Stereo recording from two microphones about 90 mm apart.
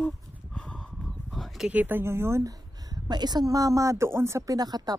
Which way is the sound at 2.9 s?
50° right (ahead or behind).